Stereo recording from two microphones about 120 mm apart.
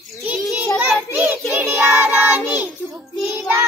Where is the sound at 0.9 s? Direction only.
10° right (ahead or behind).